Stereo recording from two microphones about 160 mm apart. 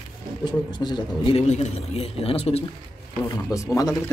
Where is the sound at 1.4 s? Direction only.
45° left (ahead or behind).